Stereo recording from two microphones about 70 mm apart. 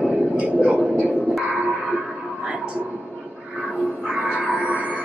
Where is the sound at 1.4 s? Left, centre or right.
Centre.